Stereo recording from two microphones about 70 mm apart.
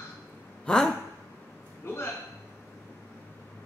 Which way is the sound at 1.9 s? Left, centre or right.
Left.